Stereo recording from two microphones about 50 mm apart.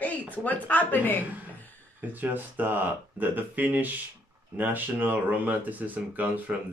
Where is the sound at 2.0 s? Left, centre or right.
Right.